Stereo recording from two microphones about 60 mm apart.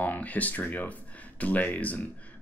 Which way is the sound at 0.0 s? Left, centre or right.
Left.